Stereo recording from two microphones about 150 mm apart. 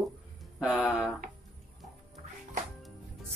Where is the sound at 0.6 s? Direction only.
Centre (ahead or behind).